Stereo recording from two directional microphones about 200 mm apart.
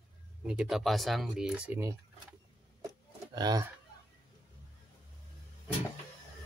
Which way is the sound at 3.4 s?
20° right (ahead or behind).